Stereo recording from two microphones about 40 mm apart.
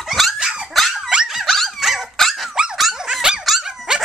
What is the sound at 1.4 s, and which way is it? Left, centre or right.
Dog, centre.